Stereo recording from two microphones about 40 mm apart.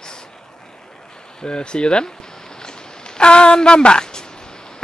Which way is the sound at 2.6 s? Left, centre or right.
Left.